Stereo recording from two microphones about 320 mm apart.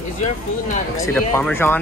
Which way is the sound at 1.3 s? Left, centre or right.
Centre.